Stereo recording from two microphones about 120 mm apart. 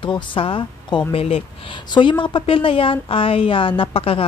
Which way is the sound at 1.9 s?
45° left (ahead or behind).